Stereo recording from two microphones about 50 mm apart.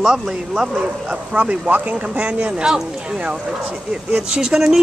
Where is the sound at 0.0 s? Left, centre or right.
Centre.